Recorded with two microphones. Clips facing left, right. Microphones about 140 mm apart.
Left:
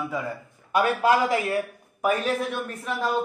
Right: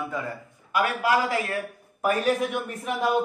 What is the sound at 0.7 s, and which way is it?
Speech, 25° left (ahead or behind).